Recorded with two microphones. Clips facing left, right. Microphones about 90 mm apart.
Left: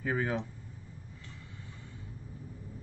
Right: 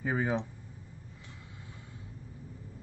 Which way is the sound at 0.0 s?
15° right (ahead or behind).